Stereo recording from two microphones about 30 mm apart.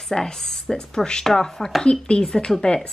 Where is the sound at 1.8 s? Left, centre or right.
Left.